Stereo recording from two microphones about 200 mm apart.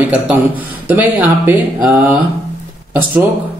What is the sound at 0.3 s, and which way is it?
A woman's voice, 10° right (ahead or behind).